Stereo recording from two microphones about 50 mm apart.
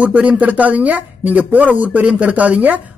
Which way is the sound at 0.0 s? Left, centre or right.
Right.